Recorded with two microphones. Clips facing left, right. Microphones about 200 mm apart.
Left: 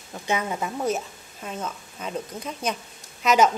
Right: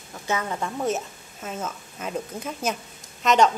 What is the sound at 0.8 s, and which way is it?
A woman's voice, centre (ahead or behind).